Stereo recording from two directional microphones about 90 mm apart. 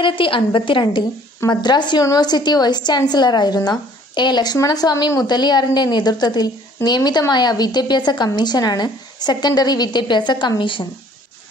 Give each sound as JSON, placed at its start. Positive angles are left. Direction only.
{"t": 0.0, "sound": "a woman's voice", "side_deg": 70}
{"t": 1.5, "sound": "a woman's voice", "side_deg": 55}
{"t": 10.6, "sound": "a woman's voice", "side_deg": 65}